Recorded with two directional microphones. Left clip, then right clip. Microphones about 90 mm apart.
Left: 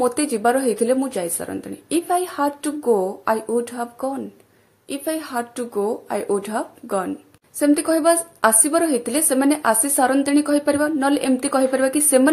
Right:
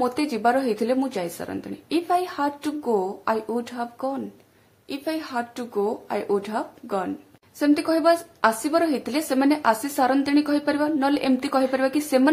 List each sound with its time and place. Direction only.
0.0 s a woman's voice: 25° left (ahead or behind)
7.5 s a woman's voice: 25° left (ahead or behind)